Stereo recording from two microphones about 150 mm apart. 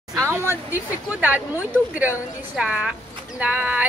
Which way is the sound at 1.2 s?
10° right (ahead or behind).